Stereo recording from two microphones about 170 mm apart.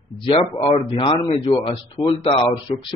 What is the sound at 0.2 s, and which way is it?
Speech, 30° left (ahead or behind).